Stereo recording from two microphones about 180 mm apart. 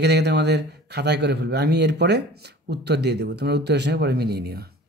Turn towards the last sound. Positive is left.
turn(degrees=-60)  # may be behind; listen again after turning